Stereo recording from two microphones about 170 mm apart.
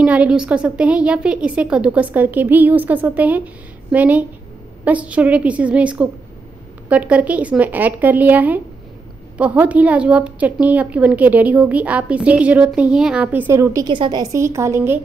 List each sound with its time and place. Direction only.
0.0 s a woman's voice: 10° right (ahead or behind)